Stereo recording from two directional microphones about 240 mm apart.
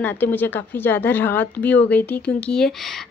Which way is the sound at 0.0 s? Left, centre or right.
Centre.